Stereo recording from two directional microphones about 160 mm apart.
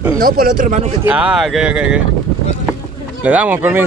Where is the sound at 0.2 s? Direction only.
60° right (ahead or behind).